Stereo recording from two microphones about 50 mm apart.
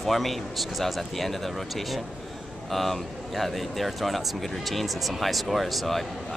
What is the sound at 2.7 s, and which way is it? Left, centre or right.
Speech, centre.